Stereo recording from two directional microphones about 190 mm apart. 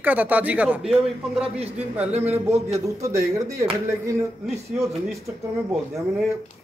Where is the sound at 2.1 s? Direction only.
35° right (ahead or behind).